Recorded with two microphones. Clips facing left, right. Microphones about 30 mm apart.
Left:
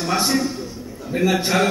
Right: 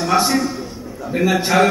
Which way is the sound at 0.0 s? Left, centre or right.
Centre.